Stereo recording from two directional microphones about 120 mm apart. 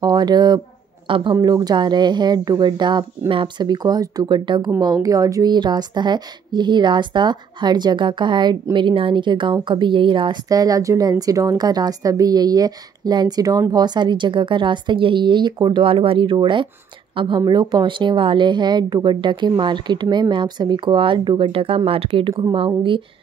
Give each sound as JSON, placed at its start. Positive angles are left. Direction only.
{"t": 0.0, "sound": "a woman's voice", "side_deg": -35}
{"t": 1.3, "sound": "a woman's voice", "side_deg": -35}
{"t": 22.3, "sound": "a woman's voice", "side_deg": -35}